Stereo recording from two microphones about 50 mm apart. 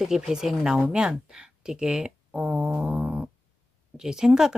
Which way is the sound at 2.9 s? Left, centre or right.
Right.